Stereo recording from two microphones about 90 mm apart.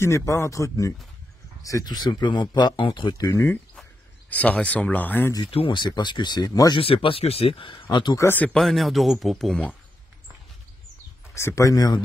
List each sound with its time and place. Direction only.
0.0 s speech: 30° left (ahead or behind); by 3.2 s 60° left (ahead or behind)
3.2 s speech: 40° left (ahead or behind)
4.3 s speech: 15° left (ahead or behind)
5.5 s speech: 75° left (ahead or behind); by 6.8 s 45° left (ahead or behind)
6.8 s speech: 90° left; by 8.2 s 60° left (ahead or behind)
8.5 s a man's voice: centre (ahead or behind)
11.3 s speech: 35° left (ahead or behind)